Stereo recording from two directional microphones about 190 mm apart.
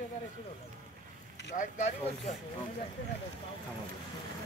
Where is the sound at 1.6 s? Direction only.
40° left (ahead or behind).